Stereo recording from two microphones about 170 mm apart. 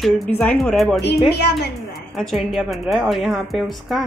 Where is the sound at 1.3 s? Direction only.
75° left (ahead or behind).